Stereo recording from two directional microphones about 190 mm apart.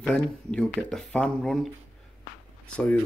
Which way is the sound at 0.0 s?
5° left (ahead or behind).